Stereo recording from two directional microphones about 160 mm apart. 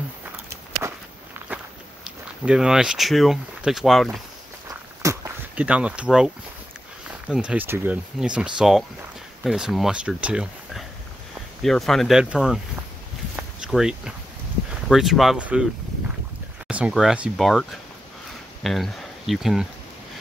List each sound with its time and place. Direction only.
0.8 s walk: 15° right (ahead or behind)
2.0 s speech: 5° right (ahead or behind)
4.6 s walk: 20° right (ahead or behind)
5.6 s speech: 10° right (ahead or behind)
13.4 s a sound: 5° right (ahead or behind)
14.9 s speech: centre (ahead or behind)
16.6 s speech: 5° right (ahead or behind)